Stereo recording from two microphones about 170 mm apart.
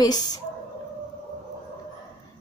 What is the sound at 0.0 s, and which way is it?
Speech, 25° left (ahead or behind).